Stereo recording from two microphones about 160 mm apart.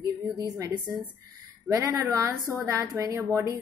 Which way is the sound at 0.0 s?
20° right (ahead or behind).